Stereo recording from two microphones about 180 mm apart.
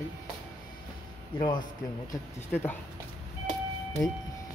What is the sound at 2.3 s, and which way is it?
Speech, 10° left (ahead or behind).